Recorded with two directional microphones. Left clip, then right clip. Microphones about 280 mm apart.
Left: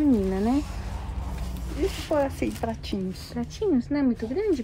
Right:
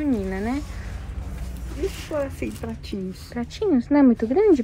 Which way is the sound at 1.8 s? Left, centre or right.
Left.